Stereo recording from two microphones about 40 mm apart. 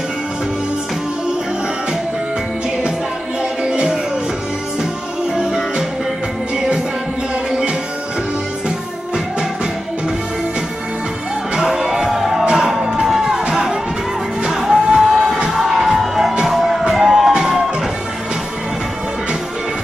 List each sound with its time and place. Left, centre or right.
3.6 s music: centre
5.3 s music: centre
8.6 s music: centre
11.6 s music: centre
13.3 s music: centre